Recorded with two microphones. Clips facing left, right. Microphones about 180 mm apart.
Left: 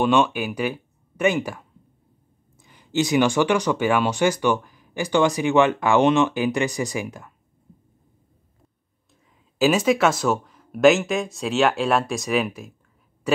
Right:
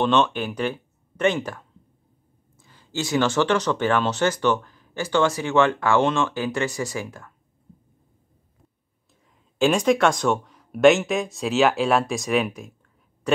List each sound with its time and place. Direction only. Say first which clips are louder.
0.0 s speech: left 1 dB; 10° left (ahead or behind)
9.6 s speech: even; 5° left (ahead or behind)